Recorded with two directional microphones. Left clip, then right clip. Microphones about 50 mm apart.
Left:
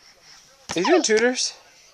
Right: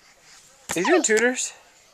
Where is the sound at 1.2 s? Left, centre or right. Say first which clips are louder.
Left 1 dB; left.